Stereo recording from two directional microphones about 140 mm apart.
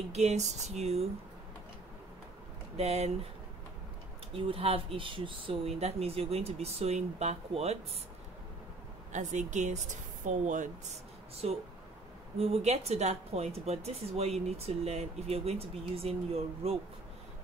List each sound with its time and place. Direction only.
0.1 s speech: 50° right (ahead or behind)
2.8 s speech: 50° right (ahead or behind)
4.3 s speech: 40° right (ahead or behind)
9.1 s speech: 60° right (ahead or behind)